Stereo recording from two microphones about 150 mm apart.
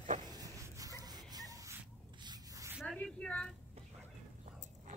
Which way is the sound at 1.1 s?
25° right (ahead or behind).